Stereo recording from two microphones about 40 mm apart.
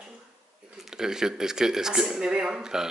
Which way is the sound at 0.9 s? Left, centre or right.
Centre.